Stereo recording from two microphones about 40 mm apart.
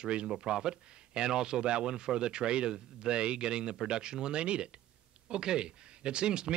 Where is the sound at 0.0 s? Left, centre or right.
Right.